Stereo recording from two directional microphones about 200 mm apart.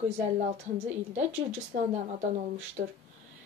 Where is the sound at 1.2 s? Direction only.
35° right (ahead or behind).